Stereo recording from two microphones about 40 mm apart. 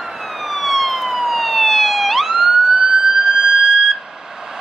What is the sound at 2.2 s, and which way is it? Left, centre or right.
Emergency vehicle, centre.